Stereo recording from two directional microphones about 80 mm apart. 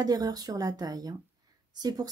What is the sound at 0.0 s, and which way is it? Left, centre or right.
Speech, right.